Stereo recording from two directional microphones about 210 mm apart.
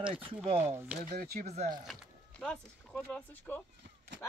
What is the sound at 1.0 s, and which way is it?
Speech, 50° right (ahead or behind).